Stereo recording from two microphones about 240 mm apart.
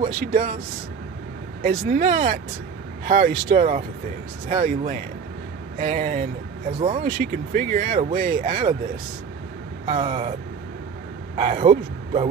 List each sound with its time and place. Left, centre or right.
0.0 s speech: right
1.6 s speech: right
9.8 s speech: right
11.3 s speech: right